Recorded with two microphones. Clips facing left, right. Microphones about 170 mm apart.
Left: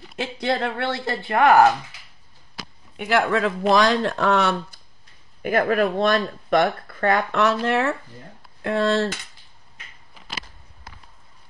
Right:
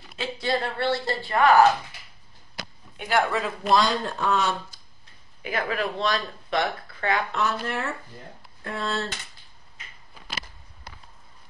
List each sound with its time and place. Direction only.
0.1 s speech: 60° left (ahead or behind)
0.8 s speech: 20° left (ahead or behind)
1.3 s speech: 60° left (ahead or behind)
3.0 s speech: 70° left (ahead or behind)
5.4 s speech: 50° left (ahead or behind)
7.3 s speech: 85° left